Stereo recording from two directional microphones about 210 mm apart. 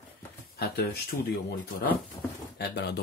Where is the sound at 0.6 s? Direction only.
45° left (ahead or behind).